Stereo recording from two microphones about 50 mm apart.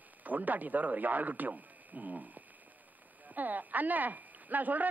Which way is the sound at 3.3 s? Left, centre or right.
Right.